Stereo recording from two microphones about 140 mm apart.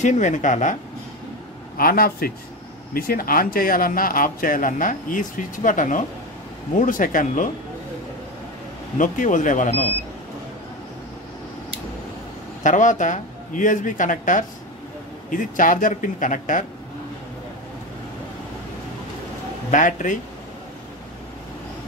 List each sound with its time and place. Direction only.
0.0 s speech: 60° left (ahead or behind)
1.8 s a man's voice: 90° left; by 7.4 s 70° left (ahead or behind)
8.9 s speech: 65° left (ahead or behind)
12.6 s a man's voice: 65° left (ahead or behind)
19.7 s speech: 65° left (ahead or behind)